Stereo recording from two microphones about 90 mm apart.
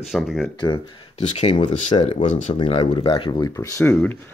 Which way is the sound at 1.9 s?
75° left (ahead or behind).